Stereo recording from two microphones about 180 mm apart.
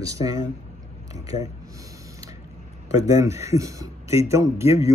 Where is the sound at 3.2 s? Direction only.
15° right (ahead or behind).